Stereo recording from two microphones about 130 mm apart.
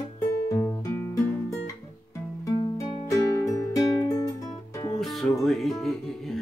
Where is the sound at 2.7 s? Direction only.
25° left (ahead or behind).